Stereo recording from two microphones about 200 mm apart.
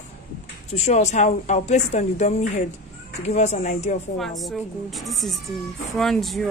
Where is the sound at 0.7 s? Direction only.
35° left (ahead or behind).